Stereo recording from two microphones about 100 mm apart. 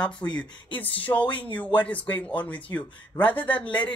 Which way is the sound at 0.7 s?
15° left (ahead or behind).